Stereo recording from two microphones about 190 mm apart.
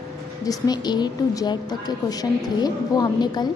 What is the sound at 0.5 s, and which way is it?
A woman's voice, 20° left (ahead or behind).